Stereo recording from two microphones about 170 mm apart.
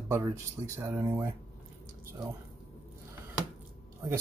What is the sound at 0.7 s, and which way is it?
Speech, 15° right (ahead or behind).